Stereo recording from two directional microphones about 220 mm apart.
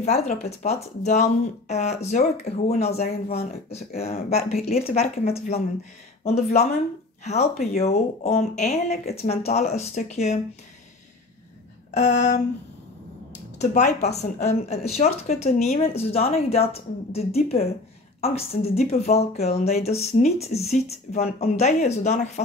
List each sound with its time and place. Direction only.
0.0 s speech: 30° left (ahead or behind)
7.2 s speech: 30° left (ahead or behind)
11.9 s speech: 30° left (ahead or behind)
13.6 s speech: 30° left (ahead or behind)